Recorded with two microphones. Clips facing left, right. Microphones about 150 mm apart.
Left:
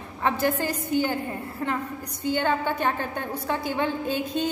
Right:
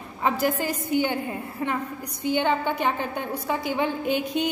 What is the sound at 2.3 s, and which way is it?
A woman's voice, 15° right (ahead or behind).